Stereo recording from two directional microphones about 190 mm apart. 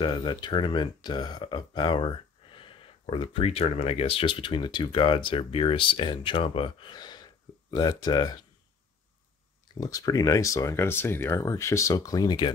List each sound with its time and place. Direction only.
0.0 s speech: 25° left (ahead or behind)
9.8 s speech: 20° left (ahead or behind)